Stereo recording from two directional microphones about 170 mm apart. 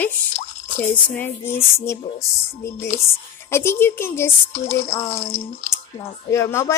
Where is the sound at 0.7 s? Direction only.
15° left (ahead or behind).